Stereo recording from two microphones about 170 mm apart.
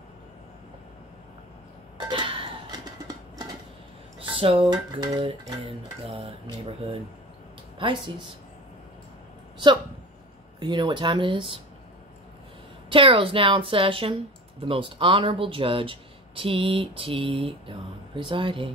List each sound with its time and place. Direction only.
2.0 s a sound: 25° right (ahead or behind)
4.2 s speech: 30° right (ahead or behind)
10.6 s speech: 25° right (ahead or behind)
12.9 s speech: 30° right (ahead or behind)